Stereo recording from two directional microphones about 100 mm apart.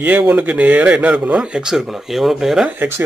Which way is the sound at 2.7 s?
20° right (ahead or behind).